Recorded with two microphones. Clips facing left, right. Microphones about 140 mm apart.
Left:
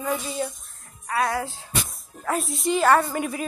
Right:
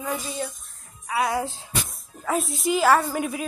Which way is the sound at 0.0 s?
Centre (ahead or behind).